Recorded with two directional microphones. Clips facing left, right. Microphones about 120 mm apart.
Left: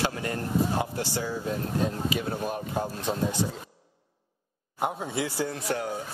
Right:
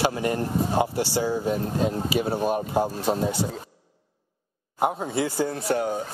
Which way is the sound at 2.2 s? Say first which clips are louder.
Right 6 dB; 30° right (ahead or behind).